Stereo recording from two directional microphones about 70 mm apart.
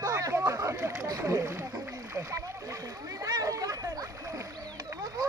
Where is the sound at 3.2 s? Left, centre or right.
Right.